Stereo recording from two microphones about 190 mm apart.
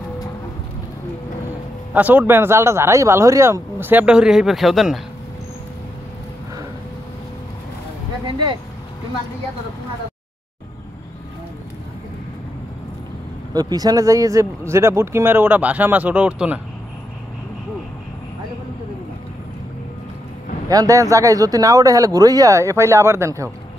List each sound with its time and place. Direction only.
2.0 s speech: 10° right (ahead or behind)
13.5 s speech: 20° right (ahead or behind)
20.6 s speech: 20° right (ahead or behind)